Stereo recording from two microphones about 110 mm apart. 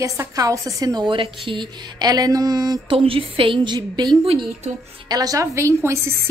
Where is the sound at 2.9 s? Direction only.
55° right (ahead or behind); by 6.1 s 25° right (ahead or behind).